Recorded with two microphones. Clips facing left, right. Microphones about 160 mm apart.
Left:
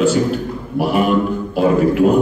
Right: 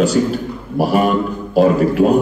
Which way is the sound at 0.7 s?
40° right (ahead or behind).